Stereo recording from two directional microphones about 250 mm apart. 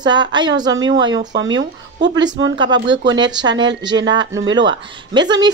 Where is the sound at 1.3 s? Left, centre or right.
Right.